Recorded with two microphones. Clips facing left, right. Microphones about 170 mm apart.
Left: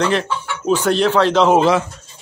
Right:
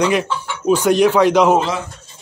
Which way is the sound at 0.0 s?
10° right (ahead or behind).